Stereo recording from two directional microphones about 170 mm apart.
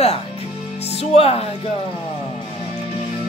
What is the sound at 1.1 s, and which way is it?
Speech, 35° left (ahead or behind).